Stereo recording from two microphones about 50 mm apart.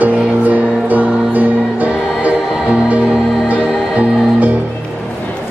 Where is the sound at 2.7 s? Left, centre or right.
Right.